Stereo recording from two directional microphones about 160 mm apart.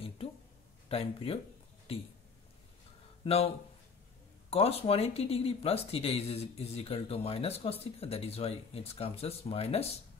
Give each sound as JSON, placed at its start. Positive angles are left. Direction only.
{"t": 0.2, "sound": "a sound", "side_deg": 35}
{"t": 0.8, "sound": "speech", "side_deg": 35}
{"t": 3.3, "sound": "speech", "side_deg": 40}